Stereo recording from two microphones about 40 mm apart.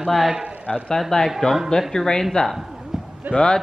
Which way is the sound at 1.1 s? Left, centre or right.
Centre.